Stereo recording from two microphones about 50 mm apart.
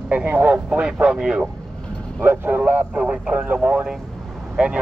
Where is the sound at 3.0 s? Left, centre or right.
Centre.